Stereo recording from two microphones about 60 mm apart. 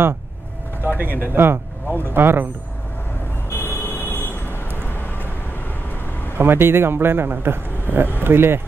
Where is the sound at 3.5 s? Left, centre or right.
Left.